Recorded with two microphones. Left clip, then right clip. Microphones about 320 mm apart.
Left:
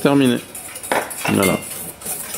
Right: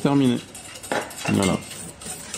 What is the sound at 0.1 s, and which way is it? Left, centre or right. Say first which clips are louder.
Speech: left 5 dB; centre.